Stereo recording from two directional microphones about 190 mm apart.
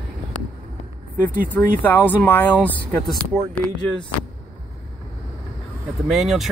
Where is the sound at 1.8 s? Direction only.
10° left (ahead or behind).